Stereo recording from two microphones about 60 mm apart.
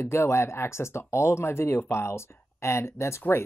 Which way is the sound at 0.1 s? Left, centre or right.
Left.